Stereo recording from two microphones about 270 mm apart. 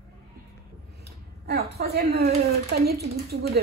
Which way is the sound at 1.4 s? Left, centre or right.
Right.